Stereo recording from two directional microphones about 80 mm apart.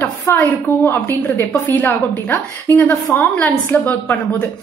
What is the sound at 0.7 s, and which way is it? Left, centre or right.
Speech, right.